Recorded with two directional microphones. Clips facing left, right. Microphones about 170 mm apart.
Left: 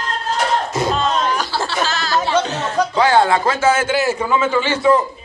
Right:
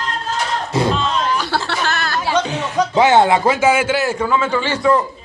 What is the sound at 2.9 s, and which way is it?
Speech, 20° right (ahead or behind).